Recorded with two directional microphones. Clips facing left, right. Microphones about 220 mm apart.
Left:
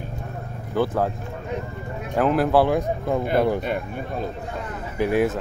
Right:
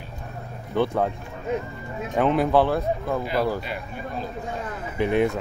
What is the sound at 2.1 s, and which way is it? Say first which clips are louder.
Speech: left 1 dB; 5° left (ahead or behind).